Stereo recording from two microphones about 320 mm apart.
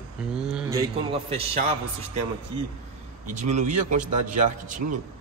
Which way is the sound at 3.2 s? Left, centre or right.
Right.